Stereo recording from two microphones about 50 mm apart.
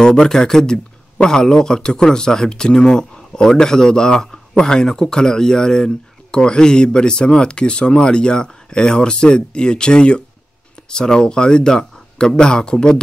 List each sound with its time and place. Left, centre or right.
0.0 s speech: centre